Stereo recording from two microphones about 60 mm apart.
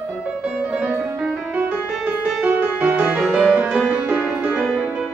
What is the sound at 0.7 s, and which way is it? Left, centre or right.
Music, centre.